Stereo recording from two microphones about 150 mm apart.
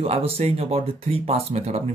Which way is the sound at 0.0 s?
40° right (ahead or behind).